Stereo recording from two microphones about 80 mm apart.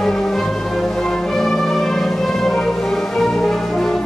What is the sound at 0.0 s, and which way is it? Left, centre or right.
Music, centre.